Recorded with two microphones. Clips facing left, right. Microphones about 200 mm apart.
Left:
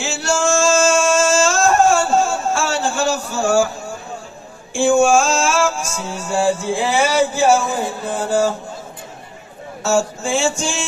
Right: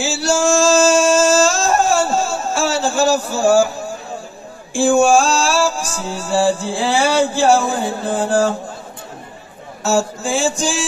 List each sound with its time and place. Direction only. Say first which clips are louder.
0.0 s male singing: right 3 dB; 35° right (ahead or behind)
2.1 s a sound: left 2 dB; 35° right (ahead or behind)
4.7 s speech: right 1 dB; 35° right (ahead or behind)
9.8 s speech: even; 35° right (ahead or behind)